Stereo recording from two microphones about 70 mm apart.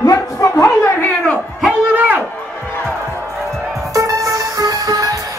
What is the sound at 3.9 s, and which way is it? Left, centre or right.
Music, right.